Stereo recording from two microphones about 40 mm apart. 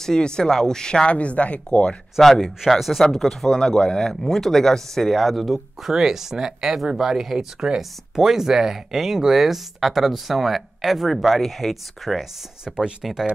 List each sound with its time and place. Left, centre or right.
0.0 s speech: centre
1.1 s speech: left
2.2 s speech: centre
3.5 s speech: centre
5.9 s speech: centre
12.6 s speech: right
13.0 s speech: centre